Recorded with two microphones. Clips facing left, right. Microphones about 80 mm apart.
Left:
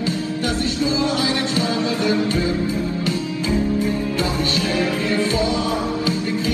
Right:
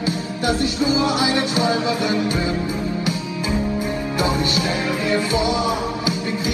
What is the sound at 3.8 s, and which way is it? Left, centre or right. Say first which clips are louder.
Music: left 1 dB; right.